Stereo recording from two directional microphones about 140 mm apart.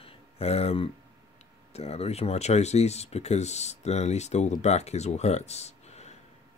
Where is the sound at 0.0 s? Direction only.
45° left (ahead or behind).